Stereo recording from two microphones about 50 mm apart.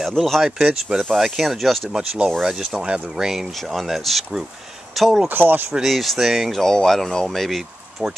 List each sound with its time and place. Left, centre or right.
0.2 s speech: centre
0.7 s speech: centre
1.1 s speech: centre
1.9 s speech: centre
5.3 s speech: right
5.7 s speech: centre
6.6 s speech: centre